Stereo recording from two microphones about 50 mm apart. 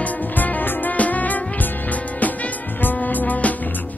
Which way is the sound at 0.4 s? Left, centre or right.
Left.